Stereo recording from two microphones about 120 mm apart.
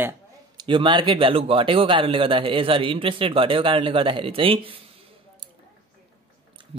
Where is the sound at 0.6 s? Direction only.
40° right (ahead or behind).